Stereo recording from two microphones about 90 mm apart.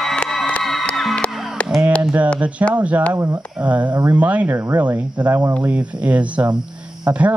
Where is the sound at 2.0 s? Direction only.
15° right (ahead or behind).